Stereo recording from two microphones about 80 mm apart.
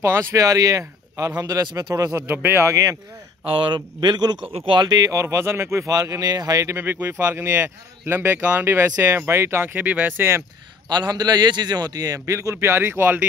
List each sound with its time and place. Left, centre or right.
0.0 s speech: right
0.4 s a man's voice: right
2.0 s speech: right
2.7 s a man's voice: right
3.5 s speech: right
5.1 s speech: right
6.8 s speech: right
10.9 s a man's voice: right